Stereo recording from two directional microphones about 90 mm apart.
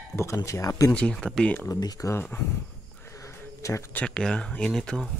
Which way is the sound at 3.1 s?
35° left (ahead or behind).